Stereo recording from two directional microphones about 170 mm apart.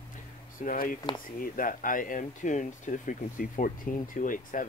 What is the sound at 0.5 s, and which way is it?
Speech, 50° left (ahead or behind).